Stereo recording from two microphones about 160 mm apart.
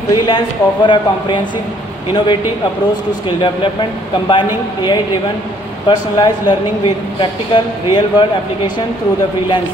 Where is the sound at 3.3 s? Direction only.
30° left (ahead or behind).